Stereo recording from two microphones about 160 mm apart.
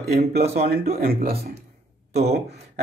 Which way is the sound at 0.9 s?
70° right (ahead or behind).